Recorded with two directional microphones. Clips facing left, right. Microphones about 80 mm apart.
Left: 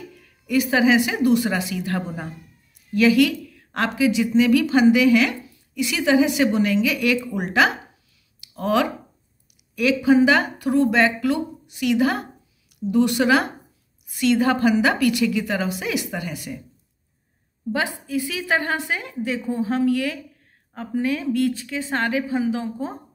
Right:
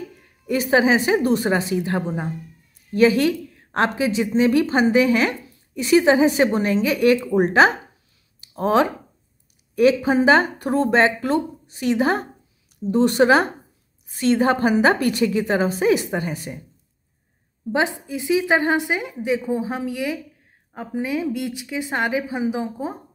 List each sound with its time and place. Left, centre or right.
0.2 s a woman's voice: right
1.9 s a woman's voice: right
2.9 s a woman's voice: right
17.7 s a woman's voice: right